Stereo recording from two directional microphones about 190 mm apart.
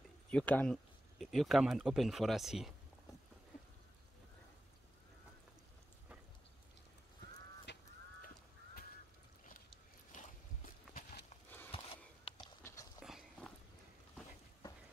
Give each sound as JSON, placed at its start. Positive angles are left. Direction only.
{"t": 0.3, "sound": "speech", "side_deg": 5}
{"t": 7.7, "sound": "goose", "side_deg": 65}
{"t": 10.1, "sound": "walk", "side_deg": 40}
{"t": 11.7, "sound": "a sound", "side_deg": 30}
{"t": 13.0, "sound": "walk", "side_deg": 0}